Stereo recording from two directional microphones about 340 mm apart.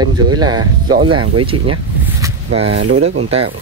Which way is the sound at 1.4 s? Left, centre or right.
Centre.